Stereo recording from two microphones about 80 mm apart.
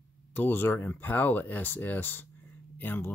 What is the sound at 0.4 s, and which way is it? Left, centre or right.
Speech, left.